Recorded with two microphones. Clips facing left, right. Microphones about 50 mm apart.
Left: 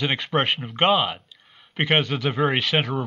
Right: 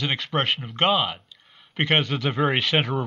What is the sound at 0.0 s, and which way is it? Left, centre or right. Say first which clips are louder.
Speech: left 2 dB; centre.